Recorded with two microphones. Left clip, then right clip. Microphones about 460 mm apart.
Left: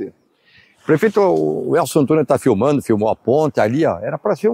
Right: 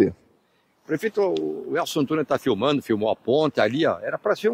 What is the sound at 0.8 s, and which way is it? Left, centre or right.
Speech, left.